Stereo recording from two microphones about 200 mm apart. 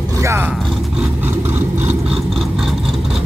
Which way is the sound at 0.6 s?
Centre (ahead or behind).